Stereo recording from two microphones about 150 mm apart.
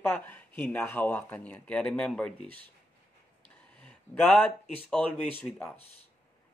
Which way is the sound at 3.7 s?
10° left (ahead or behind).